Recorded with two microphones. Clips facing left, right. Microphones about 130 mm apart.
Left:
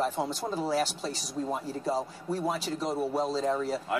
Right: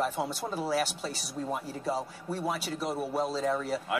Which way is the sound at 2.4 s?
10° right (ahead or behind).